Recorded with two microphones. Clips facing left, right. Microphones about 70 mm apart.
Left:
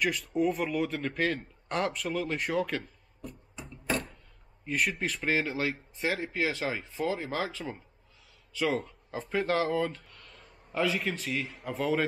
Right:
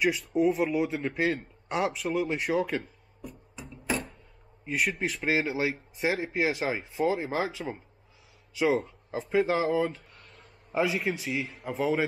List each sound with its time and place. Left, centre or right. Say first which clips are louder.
0.0 s speech: right 3 dB; centre
4.6 s speech: right 1 dB; centre
8.8 s speech: right 3 dB; centre
10.0 s a sound: even; right
10.7 s a man's voice: right 2 dB; centre